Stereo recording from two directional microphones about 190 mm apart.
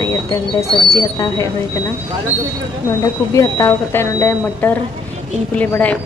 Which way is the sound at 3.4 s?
15° left (ahead or behind).